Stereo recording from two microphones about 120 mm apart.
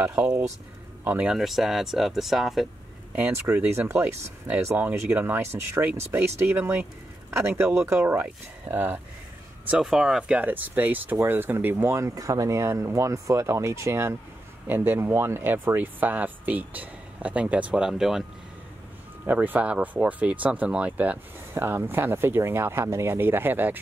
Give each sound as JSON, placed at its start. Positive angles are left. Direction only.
{"t": 0.0, "sound": "speech", "side_deg": -10}
{"t": 3.2, "sound": "speech", "side_deg": -15}
{"t": 9.7, "sound": "speech", "side_deg": -5}
{"t": 19.2, "sound": "speech", "side_deg": -15}